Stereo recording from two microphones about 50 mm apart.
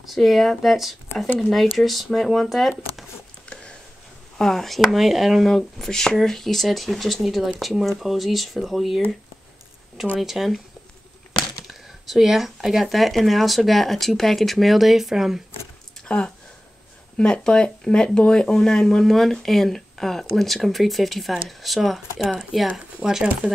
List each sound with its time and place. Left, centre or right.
0.0 s speech: centre
4.4 s speech: centre
5.8 s speech: centre
10.1 s speech: centre
11.6 s speech: centre
16.1 s speech: centre
23.0 s speech: centre